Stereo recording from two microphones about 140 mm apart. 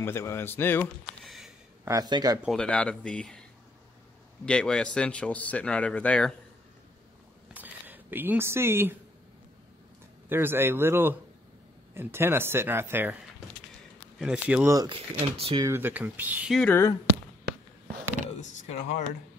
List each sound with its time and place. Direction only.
0.0 s speech: 20° left (ahead or behind)
1.2 s a sound: centre (ahead or behind)
1.9 s speech: 30° right (ahead or behind)
2.4 s speech: 5° left (ahead or behind)
4.5 s speech: 5° left (ahead or behind)
7.5 s a sound: 15° right (ahead or behind)
10.3 s speech: 15° right (ahead or behind)
14.1 s speech: 5° right (ahead or behind)
14.9 s speech: 40° right (ahead or behind)
15.6 s speech: 15° right (ahead or behind)
16.4 s speech: 5° left (ahead or behind)
18.4 s speech: 60° left (ahead or behind)